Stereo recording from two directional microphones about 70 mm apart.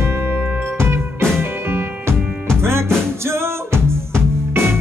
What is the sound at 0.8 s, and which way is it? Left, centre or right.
Music, right.